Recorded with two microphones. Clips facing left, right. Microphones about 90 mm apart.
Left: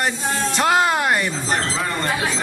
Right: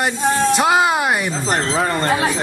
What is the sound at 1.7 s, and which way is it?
Speech, 40° right (ahead or behind).